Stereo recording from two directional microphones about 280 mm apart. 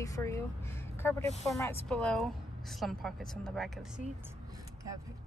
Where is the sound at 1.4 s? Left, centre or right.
Centre.